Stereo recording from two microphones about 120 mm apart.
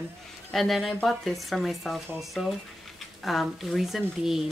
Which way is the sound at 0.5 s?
Centre (ahead or behind).